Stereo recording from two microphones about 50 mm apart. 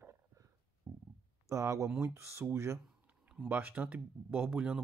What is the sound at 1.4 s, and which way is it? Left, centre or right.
Speech, right.